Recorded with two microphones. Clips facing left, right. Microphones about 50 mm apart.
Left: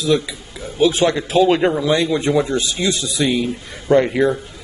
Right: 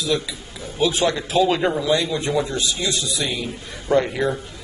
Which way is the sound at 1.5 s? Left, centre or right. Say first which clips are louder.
Left 4 dB; left.